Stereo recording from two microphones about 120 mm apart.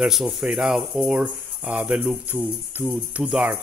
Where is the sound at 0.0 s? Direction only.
Centre (ahead or behind).